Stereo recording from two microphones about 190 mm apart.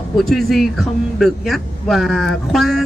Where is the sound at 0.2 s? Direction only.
Centre (ahead or behind).